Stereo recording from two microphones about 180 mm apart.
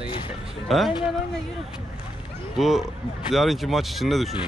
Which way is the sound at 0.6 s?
Centre (ahead or behind).